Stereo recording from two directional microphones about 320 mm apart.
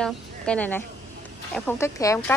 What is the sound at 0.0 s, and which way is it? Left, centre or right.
A woman's voice, centre.